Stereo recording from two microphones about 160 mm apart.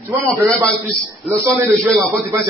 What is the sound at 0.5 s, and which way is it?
A man's voice, 5° left (ahead or behind).